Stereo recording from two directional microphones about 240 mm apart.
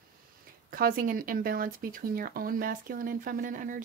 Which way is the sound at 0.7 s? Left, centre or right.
Right.